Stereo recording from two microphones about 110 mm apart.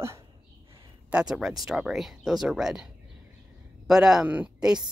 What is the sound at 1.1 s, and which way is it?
Speech, 5° right (ahead or behind).